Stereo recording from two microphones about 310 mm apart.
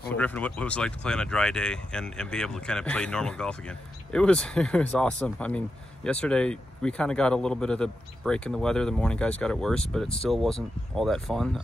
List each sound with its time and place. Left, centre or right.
0.1 s speech: centre